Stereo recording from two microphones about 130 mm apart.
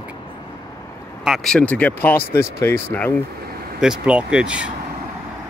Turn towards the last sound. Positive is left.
turn(degrees=-5)  # may be behind; listen again after turning